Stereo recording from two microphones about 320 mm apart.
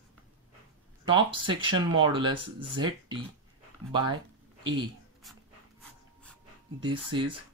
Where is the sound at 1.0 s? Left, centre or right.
Centre.